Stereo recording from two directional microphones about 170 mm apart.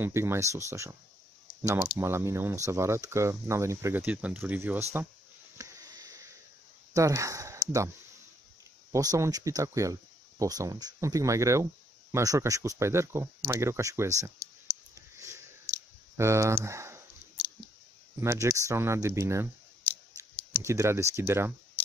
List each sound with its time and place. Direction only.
0.0 s speech: 15° right (ahead or behind)
5.6 s sniff: 20° right (ahead or behind)
6.9 s speech: 20° right (ahead or behind)
8.9 s speech: 20° right (ahead or behind)
15.0 s sniff: 15° right (ahead or behind)
16.2 s speech: 15° right (ahead or behind)
18.2 s speech: 15° right (ahead or behind)
20.6 s speech: 15° right (ahead or behind)